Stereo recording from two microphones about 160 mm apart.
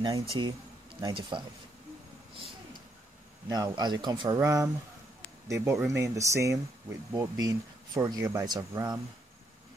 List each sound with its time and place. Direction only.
0.3 s speech: 30° right (ahead or behind)
3.4 s speech: 20° right (ahead or behind)